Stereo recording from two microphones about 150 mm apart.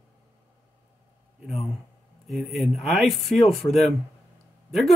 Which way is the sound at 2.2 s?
Centre (ahead or behind).